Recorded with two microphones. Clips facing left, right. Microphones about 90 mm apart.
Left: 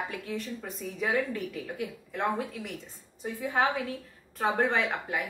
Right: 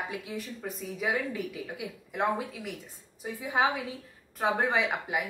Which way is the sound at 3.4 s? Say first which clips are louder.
Even; 15° right (ahead or behind).